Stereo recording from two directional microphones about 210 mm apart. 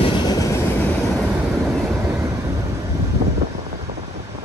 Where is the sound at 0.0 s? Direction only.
15° left (ahead or behind).